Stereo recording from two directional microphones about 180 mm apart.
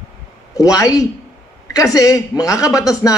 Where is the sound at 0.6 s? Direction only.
20° left (ahead or behind).